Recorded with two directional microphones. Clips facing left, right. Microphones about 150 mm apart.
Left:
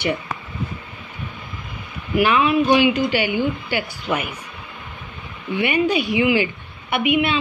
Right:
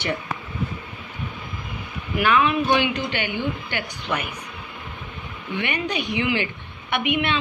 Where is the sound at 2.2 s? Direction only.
10° left (ahead or behind).